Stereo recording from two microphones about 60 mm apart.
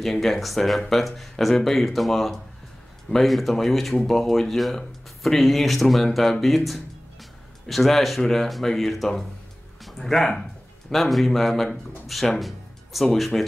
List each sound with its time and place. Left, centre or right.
0.0 s speech: centre